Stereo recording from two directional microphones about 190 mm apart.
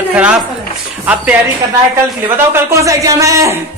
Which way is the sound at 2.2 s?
15° right (ahead or behind).